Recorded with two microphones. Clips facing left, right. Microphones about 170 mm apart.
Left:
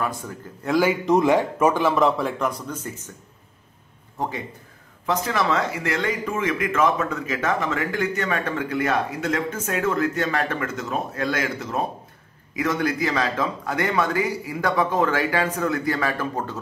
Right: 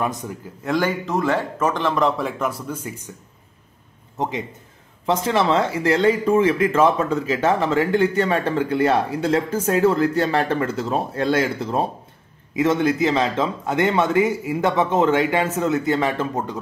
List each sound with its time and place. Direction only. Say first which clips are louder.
0.0 s a man's voice: right 3 dB; 15° right (ahead or behind)
0.7 s speech: left 1 dB; 5° left (ahead or behind)
1.0 s speech: left 4 dB; 15° left (ahead or behind); by 3.1 s 10° right (ahead or behind)
5.0 s a man's voice: right 4 dB; 30° right (ahead or behind)